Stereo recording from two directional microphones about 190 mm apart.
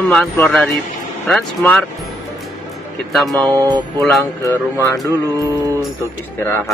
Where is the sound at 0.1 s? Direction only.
5° left (ahead or behind).